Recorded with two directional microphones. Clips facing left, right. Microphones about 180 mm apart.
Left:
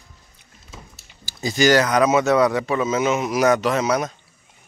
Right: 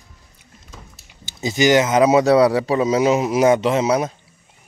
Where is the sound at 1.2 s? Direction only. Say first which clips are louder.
Right 1 dB; 20° right (ahead or behind).